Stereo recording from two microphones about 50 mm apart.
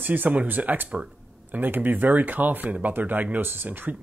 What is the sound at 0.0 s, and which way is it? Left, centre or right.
Speech, right.